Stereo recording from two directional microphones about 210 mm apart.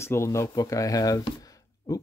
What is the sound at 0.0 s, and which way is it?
Speech, 10° left (ahead or behind).